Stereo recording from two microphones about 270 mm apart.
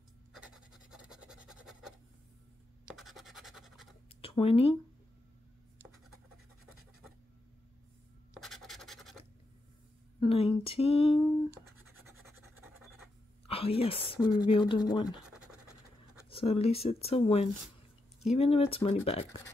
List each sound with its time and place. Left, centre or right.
0.3 s scratch: centre
4.2 s speech: left
8.4 s scratch: centre
10.2 s speech: left
13.5 s a woman's voice: left
16.3 s speech: left